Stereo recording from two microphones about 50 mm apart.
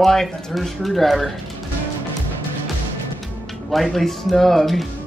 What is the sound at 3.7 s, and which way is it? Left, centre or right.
Speech, centre.